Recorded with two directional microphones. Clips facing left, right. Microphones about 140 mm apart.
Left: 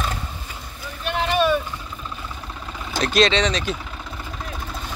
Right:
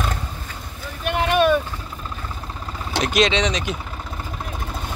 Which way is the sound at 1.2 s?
55° right (ahead or behind).